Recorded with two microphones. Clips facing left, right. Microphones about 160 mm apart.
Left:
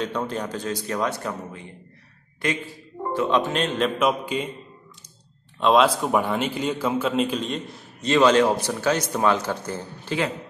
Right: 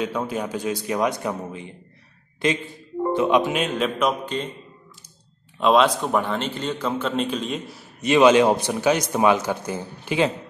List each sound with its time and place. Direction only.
0.0 s a man's voice: 5° right (ahead or behind)
3.2 s a man's voice: 15° right (ahead or behind)
4.3 s a man's voice: 10° left (ahead or behind)
5.6 s a man's voice: centre (ahead or behind)
8.1 s a man's voice: 15° right (ahead or behind)